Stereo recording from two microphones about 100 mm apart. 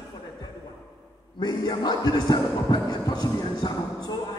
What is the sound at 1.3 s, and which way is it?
A man's voice, 40° left (ahead or behind).